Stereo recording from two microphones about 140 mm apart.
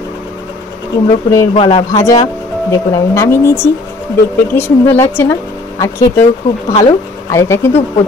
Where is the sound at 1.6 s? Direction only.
40° left (ahead or behind).